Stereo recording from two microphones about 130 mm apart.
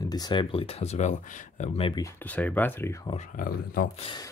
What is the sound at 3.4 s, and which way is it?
Speech, 90° left.